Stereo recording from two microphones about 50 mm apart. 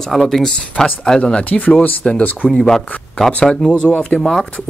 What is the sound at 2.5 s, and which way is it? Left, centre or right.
Speech, centre.